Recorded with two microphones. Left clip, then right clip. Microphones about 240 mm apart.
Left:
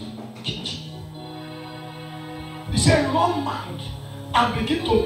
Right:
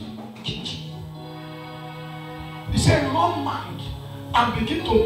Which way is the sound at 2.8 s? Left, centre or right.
Right.